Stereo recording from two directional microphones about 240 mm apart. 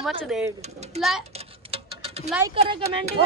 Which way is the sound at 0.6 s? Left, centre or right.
Right.